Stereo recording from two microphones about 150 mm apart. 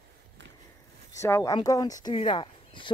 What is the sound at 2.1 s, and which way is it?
Speech, 35° left (ahead or behind).